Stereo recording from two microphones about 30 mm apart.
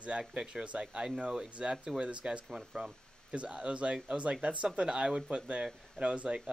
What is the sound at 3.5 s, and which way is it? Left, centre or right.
Speech, right.